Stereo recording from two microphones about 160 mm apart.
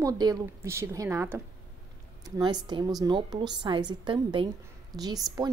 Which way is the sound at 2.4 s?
25° right (ahead or behind).